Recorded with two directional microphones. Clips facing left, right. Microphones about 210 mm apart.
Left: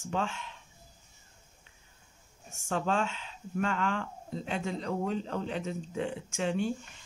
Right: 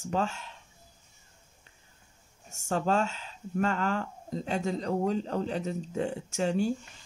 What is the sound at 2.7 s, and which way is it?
Speech, 40° right (ahead or behind).